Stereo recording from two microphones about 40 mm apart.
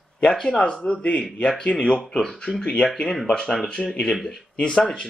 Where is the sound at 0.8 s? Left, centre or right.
Left.